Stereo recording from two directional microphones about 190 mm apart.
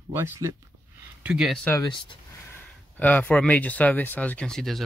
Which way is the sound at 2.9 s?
10° left (ahead or behind).